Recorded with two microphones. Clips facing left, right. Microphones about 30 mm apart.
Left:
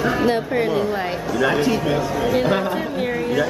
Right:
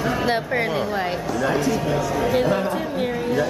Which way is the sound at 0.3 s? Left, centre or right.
Centre.